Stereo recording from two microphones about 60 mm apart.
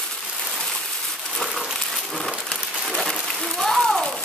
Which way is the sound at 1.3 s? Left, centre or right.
Centre.